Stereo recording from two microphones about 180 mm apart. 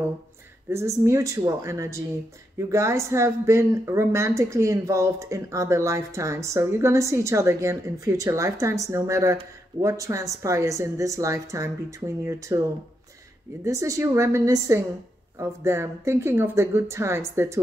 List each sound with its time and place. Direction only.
0.7 s speech: 15° right (ahead or behind)
13.7 s speech: 15° right (ahead or behind)